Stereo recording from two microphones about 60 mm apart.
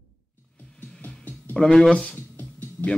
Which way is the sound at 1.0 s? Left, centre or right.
Left.